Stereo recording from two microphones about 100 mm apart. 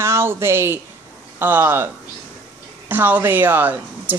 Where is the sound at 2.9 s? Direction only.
20° right (ahead or behind).